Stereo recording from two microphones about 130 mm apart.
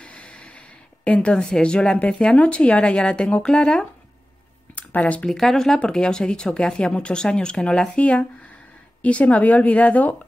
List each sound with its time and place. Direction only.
0.0 s speech: 10° left (ahead or behind)